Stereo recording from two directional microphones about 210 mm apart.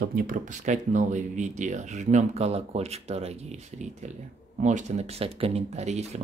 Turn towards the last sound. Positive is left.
turn(degrees=-30)  # may be behind; listen again after turning